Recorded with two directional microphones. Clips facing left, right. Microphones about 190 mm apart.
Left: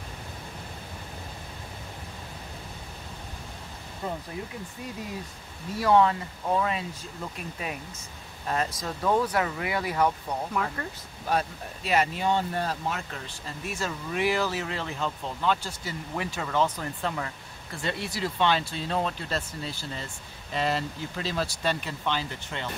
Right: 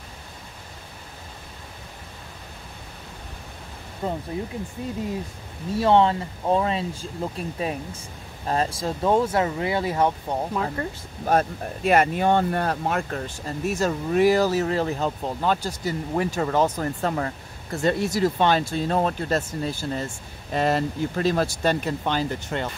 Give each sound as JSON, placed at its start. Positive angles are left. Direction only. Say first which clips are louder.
{"t": 4.0, "sound": "speech", "louder": "right 5 dB", "side_deg": -30}
{"t": 5.8, "sound": "speech", "louder": "right 3 dB", "side_deg": -25}
{"t": 11.2, "sound": "speech", "louder": "right 6 dB", "side_deg": -50}